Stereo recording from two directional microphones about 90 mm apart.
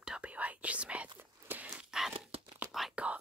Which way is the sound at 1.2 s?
25° right (ahead or behind).